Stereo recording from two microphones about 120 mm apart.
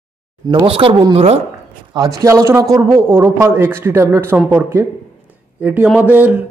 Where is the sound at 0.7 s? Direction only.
50° right (ahead or behind).